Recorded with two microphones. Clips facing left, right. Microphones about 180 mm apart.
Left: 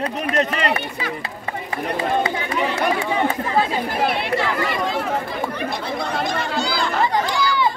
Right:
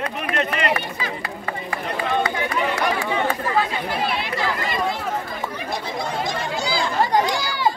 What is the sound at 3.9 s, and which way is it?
Speech, 60° left (ahead or behind).